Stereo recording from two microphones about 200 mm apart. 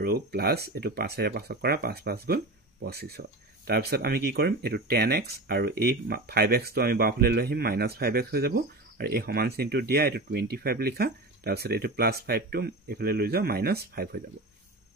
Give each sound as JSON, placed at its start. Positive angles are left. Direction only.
{"t": 0.0, "sound": "speech", "side_deg": -50}